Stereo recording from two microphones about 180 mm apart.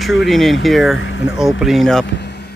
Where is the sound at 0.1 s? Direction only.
Centre (ahead or behind).